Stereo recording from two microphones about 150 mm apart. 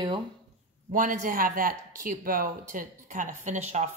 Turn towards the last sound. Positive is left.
turn(degrees=-50)  # may be behind; listen again after turning